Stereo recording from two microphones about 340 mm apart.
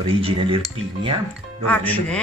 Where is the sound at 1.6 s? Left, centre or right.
Centre.